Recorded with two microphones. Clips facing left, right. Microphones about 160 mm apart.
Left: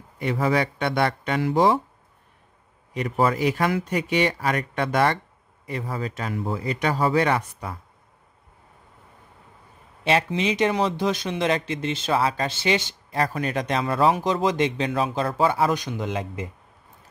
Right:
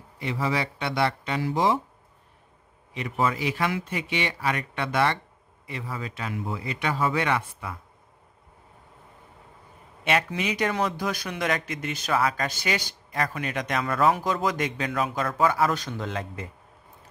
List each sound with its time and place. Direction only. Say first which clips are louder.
0.2 s speech: left 5 dB; 50° left (ahead or behind)
2.9 s a man's voice: left 4 dB; 40° left (ahead or behind)
10.0 s speech: left 4 dB; 30° left (ahead or behind)